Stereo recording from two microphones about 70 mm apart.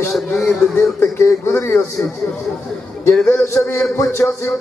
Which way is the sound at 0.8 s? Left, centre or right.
Left.